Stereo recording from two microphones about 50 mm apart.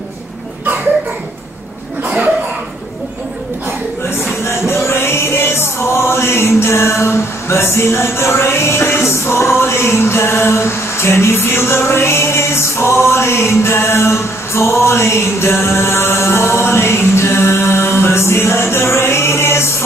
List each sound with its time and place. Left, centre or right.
4.5 s music: left